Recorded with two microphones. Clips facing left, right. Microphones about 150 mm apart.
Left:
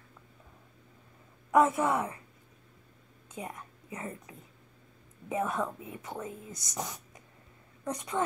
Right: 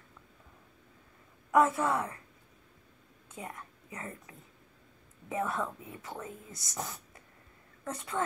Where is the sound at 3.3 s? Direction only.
20° left (ahead or behind).